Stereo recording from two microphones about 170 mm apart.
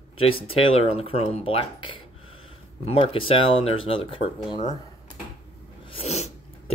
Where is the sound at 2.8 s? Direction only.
35° left (ahead or behind).